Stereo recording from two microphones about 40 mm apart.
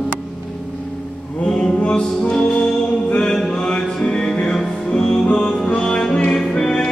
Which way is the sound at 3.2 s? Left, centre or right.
Centre.